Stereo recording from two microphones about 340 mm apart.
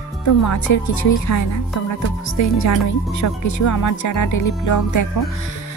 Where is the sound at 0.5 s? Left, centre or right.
Left.